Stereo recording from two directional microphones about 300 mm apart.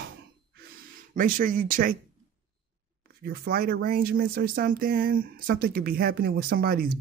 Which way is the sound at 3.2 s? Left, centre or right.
Right.